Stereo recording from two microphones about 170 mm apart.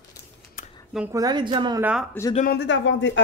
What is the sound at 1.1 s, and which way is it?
Speech, 25° right (ahead or behind).